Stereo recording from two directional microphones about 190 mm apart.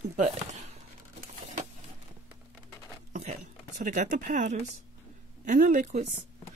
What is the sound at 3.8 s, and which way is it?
Speech, 40° right (ahead or behind).